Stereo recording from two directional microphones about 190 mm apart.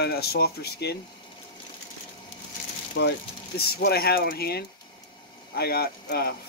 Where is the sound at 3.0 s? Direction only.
65° left (ahead or behind).